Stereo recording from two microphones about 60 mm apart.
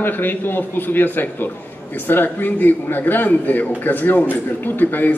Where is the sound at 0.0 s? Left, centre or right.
Left.